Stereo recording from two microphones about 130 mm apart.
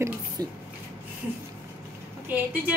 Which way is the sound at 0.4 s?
30° right (ahead or behind).